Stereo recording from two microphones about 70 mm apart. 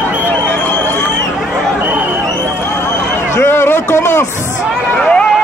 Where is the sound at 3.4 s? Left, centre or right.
Left.